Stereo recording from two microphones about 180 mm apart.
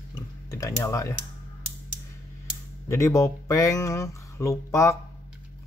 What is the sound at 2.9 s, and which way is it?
Speech, 15° left (ahead or behind).